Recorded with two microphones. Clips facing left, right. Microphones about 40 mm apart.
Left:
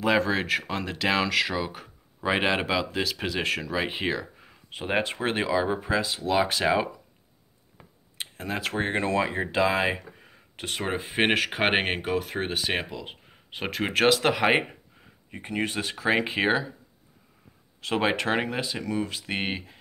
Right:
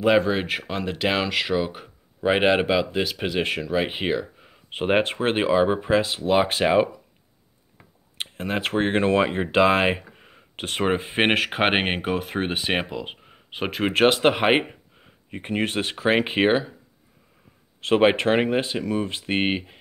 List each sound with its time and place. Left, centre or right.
0.2 s speech: centre
4.6 s speech: right
8.2 s speech: right
10.2 s a sound: right
10.8 s speech: right
11.3 s speech: centre
13.9 s speech: right
15.3 s speech: right
17.7 s speech: right